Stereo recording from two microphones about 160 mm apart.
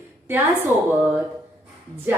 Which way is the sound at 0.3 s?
15° right (ahead or behind).